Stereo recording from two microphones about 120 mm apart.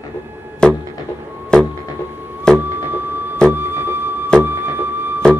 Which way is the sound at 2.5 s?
20° right (ahead or behind).